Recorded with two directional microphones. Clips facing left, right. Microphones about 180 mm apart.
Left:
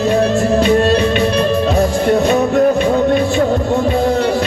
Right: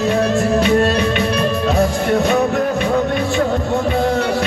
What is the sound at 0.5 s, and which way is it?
Music, 30° left (ahead or behind).